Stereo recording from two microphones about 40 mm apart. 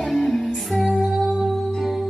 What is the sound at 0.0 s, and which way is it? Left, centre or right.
Music, centre.